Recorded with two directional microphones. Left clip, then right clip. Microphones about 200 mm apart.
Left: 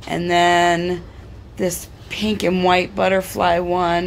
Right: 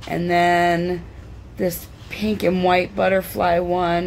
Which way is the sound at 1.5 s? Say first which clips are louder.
Left 1 dB; 15° left (ahead or behind).